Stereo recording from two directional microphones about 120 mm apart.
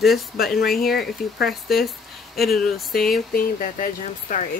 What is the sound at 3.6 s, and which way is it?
Speech, 90° left.